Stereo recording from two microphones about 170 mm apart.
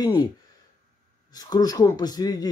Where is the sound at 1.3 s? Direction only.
20° left (ahead or behind).